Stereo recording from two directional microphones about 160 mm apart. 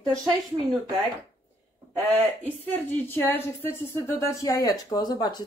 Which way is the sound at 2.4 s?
10° left (ahead or behind).